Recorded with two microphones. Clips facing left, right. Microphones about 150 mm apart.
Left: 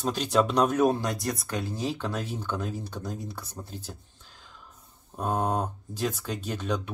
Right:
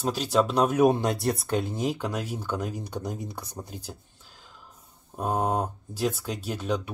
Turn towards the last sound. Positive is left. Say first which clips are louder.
# right 1 dB
turn(degrees=-10)  # may be behind; listen again after turning